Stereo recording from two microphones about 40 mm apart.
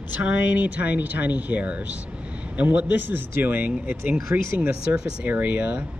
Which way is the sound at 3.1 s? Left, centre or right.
Right.